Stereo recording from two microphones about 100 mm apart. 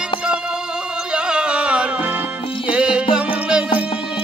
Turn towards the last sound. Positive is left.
turn(degrees=-10)  # may be behind; listen again after turning